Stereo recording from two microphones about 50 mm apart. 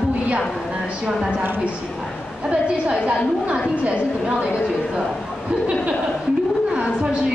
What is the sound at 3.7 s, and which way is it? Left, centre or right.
Speech, right.